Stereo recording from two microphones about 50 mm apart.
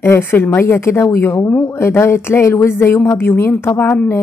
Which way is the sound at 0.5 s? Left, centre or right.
Left.